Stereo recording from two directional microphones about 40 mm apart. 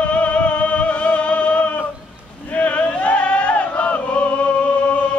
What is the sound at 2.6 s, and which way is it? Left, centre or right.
Chant, left.